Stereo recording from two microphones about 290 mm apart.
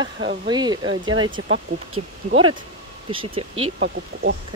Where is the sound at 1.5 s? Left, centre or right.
Right.